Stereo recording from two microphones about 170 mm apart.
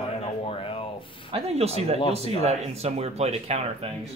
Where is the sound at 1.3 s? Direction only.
40° right (ahead or behind).